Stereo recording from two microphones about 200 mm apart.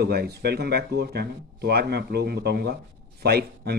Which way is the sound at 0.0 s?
55° right (ahead or behind).